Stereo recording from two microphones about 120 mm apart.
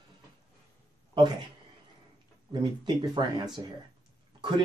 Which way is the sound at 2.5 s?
40° right (ahead or behind).